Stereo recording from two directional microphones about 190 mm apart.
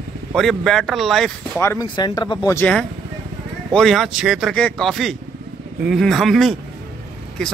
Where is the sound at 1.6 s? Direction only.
15° left (ahead or behind).